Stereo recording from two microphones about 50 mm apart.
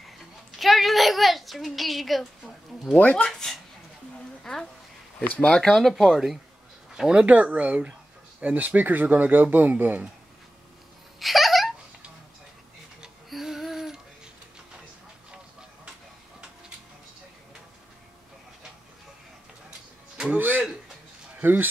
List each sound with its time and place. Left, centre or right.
0.6 s a sound: centre
3.2 s speech: centre
4.4 s a sound: centre
5.6 s speech: centre
6.9 s speech: centre
7.2 s speech: right
11.1 s a sound: centre
13.3 s music: centre
20.3 s music: right
21.4 s speech: right